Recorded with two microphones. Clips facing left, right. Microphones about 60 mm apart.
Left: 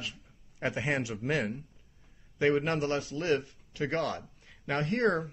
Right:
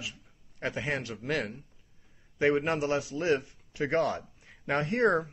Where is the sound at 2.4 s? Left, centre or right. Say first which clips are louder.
Right 1 dB; centre.